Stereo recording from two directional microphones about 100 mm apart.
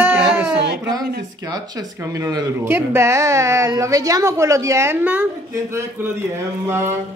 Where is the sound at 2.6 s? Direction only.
25° right (ahead or behind).